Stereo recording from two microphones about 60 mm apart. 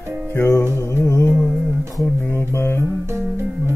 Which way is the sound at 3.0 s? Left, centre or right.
Right.